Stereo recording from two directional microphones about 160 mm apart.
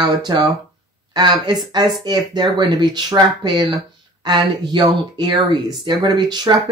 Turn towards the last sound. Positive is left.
turn(degrees=-25)  # may be behind; listen again after turning